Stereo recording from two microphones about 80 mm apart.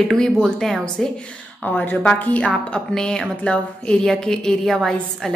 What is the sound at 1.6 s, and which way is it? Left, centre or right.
A woman's voice, left.